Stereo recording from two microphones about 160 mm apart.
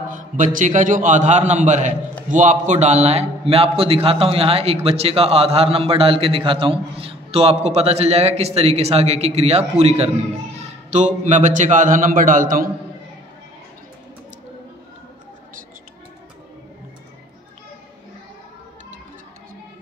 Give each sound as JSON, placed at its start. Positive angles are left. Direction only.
{"t": 0.1, "sound": "a man's voice", "side_deg": -55}